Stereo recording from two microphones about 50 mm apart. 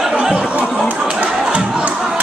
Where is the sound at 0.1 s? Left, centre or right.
Centre.